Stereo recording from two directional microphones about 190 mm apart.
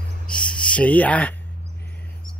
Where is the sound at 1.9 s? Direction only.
10° left (ahead or behind).